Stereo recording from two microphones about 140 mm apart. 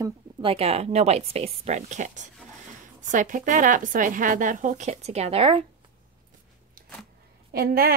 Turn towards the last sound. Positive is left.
turn(degrees=-90)